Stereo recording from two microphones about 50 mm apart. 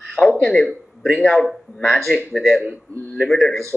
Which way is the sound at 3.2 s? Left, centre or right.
Centre.